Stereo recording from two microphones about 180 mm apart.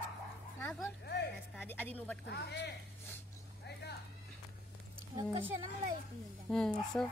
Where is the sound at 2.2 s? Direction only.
70° left (ahead or behind).